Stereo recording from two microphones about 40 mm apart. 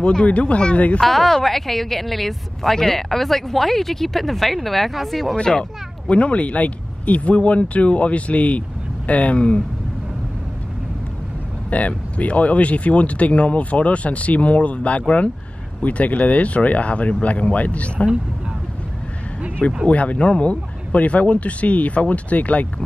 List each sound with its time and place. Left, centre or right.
0.0 s speech: left
1.0 s a woman's voice: centre
5.3 s speech: centre
6.1 s speech: left
11.7 s speech: left
19.9 s speech: left